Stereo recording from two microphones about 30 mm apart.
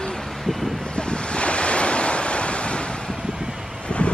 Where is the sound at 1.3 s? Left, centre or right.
Left.